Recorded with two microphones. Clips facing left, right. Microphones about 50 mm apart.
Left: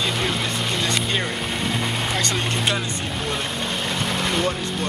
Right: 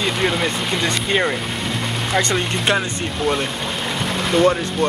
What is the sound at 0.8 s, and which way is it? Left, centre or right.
Speech, right.